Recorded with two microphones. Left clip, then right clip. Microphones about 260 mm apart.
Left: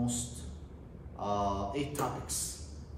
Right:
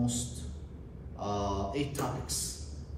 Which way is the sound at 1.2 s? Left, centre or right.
Centre.